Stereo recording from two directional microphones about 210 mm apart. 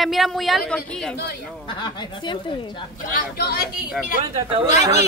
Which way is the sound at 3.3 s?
45° left (ahead or behind).